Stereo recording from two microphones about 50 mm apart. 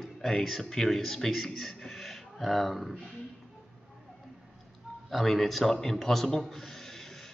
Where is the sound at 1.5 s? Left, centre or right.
Centre.